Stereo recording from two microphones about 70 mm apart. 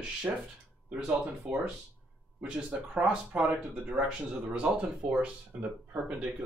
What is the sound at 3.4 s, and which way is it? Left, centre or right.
Speech, right.